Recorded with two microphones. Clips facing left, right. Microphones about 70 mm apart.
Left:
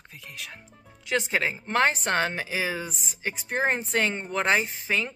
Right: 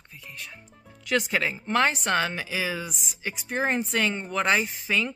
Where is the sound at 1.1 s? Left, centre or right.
Left.